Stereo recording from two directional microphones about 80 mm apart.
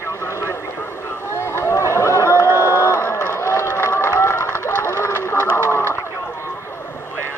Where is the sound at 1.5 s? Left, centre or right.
Left.